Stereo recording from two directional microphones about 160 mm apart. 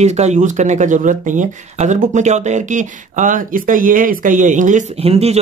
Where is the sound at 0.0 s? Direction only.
45° right (ahead or behind).